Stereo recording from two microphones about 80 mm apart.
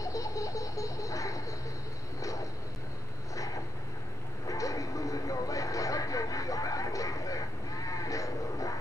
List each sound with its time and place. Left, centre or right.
0.0 s baby laughter: left
4.5 s vehicle: left